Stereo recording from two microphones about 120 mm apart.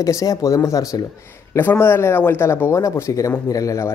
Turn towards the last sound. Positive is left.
turn(degrees=25)  # may be behind; listen again after turning